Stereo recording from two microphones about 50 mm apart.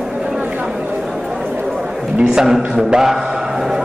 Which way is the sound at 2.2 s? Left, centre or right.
Centre.